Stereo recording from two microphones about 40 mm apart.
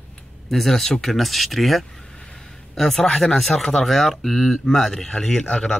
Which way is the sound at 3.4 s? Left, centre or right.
Centre.